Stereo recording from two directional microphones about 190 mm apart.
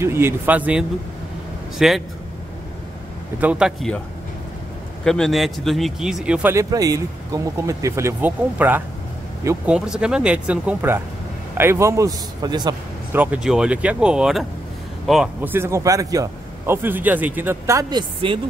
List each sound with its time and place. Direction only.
0.0 s speech: 15° right (ahead or behind)
3.3 s speech: 5° right (ahead or behind)
5.0 s speech: 5° left (ahead or behind); by 9.8 s 15° right (ahead or behind)
9.8 s speech: 5° right (ahead or behind); by 12.7 s 20° right (ahead or behind)
13.1 s speech: 10° right (ahead or behind)
15.5 s speech: 15° right (ahead or behind)